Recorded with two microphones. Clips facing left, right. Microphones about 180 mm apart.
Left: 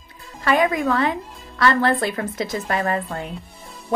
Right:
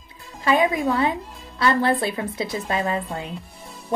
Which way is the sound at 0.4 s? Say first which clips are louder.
Left 1 dB; 20° right (ahead or behind).